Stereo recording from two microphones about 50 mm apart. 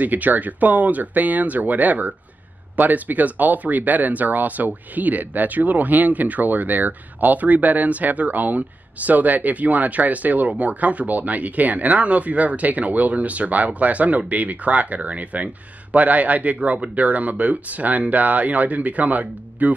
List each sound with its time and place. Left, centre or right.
0.0 s speech: right